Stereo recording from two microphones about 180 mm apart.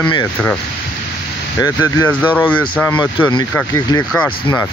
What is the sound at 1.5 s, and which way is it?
Speech, 20° left (ahead or behind).